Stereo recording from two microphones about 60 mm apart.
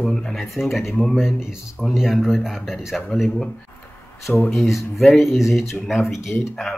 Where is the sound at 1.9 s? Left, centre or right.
Centre.